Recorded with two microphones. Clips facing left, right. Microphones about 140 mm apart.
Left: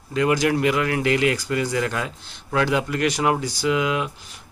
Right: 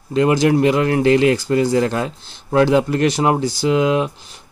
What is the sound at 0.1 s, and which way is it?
Speech, 30° right (ahead or behind).